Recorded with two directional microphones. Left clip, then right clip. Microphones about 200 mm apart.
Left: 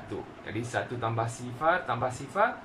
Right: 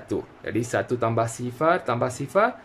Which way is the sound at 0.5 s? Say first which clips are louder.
Right 8 dB; 35° right (ahead or behind).